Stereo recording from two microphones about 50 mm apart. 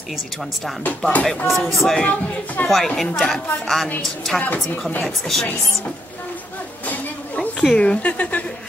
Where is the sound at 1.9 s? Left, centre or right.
Centre.